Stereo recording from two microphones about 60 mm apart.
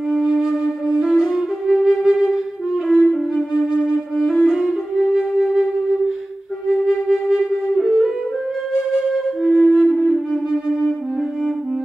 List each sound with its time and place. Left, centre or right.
0.1 s flute: centre
2.1 s wind instrument: centre
2.9 s music: centre
7.1 s flute: centre
9.1 s music: centre